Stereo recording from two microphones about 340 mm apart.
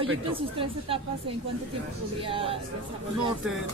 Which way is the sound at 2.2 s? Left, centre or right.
Centre.